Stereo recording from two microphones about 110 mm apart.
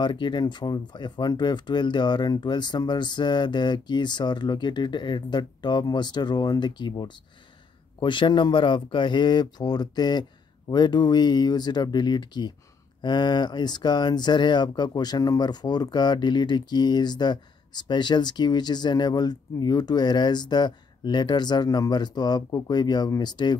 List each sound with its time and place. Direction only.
0.0 s speech: 45° left (ahead or behind)